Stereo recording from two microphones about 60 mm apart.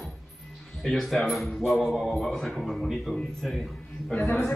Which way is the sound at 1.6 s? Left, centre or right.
Centre.